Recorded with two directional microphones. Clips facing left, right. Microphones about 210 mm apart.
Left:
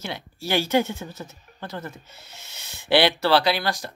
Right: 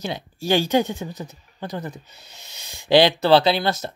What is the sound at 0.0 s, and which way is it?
Speech, 15° right (ahead or behind).